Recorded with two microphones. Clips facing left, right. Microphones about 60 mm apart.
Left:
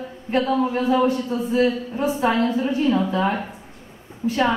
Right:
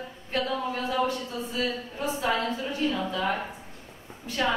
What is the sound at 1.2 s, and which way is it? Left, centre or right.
A woman's voice, left.